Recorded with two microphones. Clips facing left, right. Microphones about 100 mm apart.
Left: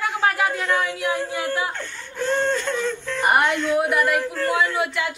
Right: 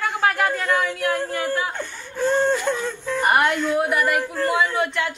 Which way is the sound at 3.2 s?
5° right (ahead or behind).